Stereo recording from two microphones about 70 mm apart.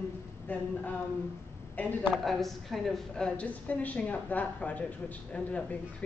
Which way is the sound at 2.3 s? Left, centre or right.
Centre.